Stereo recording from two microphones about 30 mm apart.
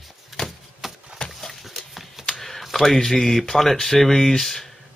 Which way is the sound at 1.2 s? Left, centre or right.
Left.